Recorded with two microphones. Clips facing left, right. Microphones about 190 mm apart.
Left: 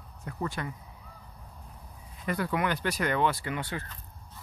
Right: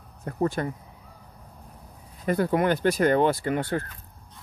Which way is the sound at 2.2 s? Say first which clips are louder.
Right 7 dB; 40° right (ahead or behind).